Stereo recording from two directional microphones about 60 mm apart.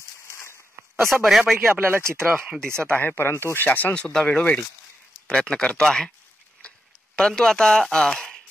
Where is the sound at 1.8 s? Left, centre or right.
Right.